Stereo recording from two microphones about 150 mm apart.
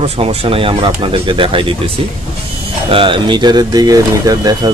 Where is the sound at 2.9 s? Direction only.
35° right (ahead or behind).